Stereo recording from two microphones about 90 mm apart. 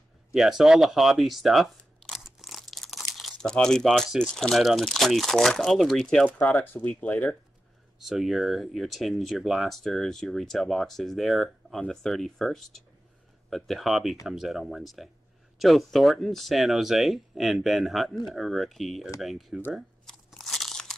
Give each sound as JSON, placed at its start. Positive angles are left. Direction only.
{"t": 0.3, "sound": "speech", "side_deg": -5}
{"t": 6.3, "sound": "speech", "side_deg": 15}
{"t": 8.0, "sound": "speech", "side_deg": 0}
{"t": 19.7, "sound": "crunch", "side_deg": 0}